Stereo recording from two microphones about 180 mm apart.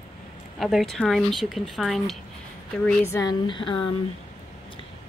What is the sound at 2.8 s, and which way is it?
Speech, 15° left (ahead or behind).